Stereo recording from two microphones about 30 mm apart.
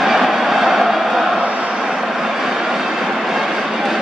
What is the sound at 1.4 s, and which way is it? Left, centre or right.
Vehicle, right.